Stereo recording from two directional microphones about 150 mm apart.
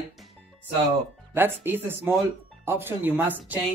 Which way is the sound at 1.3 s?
15° right (ahead or behind).